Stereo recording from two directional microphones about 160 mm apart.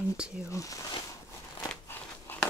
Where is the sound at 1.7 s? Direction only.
15° left (ahead or behind).